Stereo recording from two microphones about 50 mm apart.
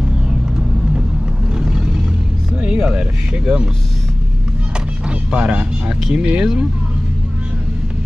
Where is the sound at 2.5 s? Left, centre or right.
Centre.